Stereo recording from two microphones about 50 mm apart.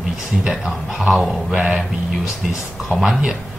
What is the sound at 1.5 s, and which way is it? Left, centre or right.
Music, centre.